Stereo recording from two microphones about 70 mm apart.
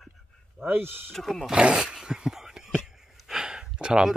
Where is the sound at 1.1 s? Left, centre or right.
Centre.